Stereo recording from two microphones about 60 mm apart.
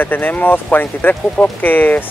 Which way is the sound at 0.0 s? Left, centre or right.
Left.